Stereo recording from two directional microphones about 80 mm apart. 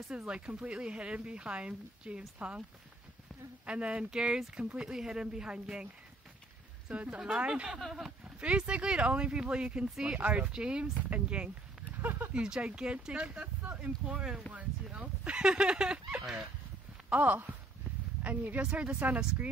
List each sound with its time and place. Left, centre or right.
0.1 s speech: centre
3.6 s speech: centre
6.9 s speech: centre
10.1 s speech: centre
12.0 s speech: right
12.4 s speech: centre
17.1 s a woman's voice: centre